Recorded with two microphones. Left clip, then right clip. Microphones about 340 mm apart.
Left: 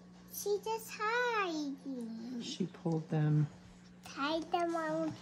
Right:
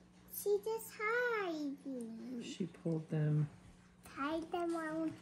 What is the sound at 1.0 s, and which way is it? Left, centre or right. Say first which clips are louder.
Speech: left 3 dB; centre.